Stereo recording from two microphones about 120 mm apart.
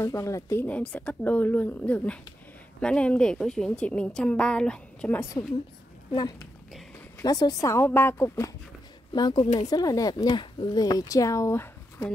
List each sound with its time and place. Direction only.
0.0 s speech: 25° left (ahead or behind)
0.7 s a woman's voice: 10° left (ahead or behind)
7.2 s speech: 30° left (ahead or behind)
9.1 s speech: 35° left (ahead or behind); by 12.1 s 20° left (ahead or behind)